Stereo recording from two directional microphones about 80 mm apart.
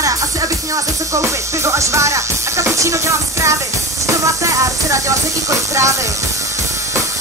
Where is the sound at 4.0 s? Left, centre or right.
Right.